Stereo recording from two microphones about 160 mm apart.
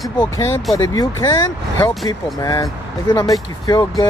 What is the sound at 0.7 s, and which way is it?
Speech, 20° left (ahead or behind).